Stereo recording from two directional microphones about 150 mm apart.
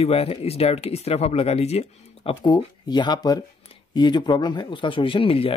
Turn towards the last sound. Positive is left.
turn(degrees=40)  # may be behind; listen again after turning